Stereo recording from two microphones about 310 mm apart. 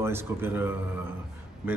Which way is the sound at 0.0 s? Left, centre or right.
Centre.